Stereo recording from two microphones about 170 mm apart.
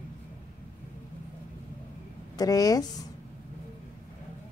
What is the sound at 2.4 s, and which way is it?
Speech, 20° left (ahead or behind).